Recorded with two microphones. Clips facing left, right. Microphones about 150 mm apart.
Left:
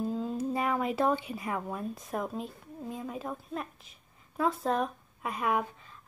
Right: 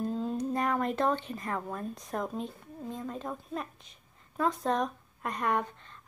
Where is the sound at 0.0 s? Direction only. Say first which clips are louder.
Even; 5° left (ahead or behind).